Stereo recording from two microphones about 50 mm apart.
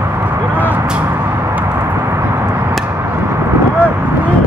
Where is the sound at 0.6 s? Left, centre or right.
Right.